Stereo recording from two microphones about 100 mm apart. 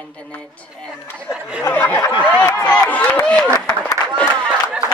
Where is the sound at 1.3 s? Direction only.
10° right (ahead or behind).